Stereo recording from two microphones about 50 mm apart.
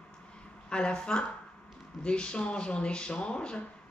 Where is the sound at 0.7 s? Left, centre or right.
Centre.